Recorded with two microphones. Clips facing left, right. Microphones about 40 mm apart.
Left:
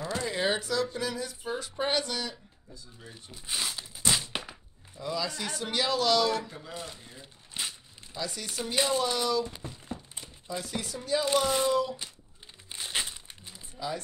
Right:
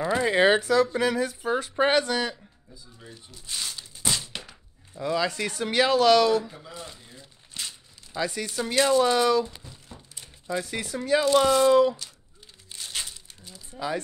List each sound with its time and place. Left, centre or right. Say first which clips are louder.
0.0 s zipper: right 8 dB; right
0.3 s speech: right 9 dB; right
3.3 s zipper: left 1 dB; centre
4.3 s a sound: left 2 dB; centre
5.0 s speech: right 6 dB; right
6.8 s speech: even; centre
7.2 s a sound: left 1 dB; centre
8.2 s speech: right 7 dB; right
9.6 s a sound: left 7 dB; left
10.2 s speech: right 9 dB; right
11.0 s speech: right 6 dB; right
12.7 s crumpling: left 2 dB; left
13.7 s speech: right 5 dB; right